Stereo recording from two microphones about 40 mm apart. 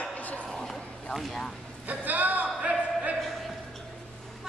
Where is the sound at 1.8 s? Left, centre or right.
Right.